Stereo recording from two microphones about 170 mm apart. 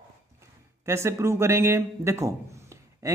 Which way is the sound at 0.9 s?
15° right (ahead or behind).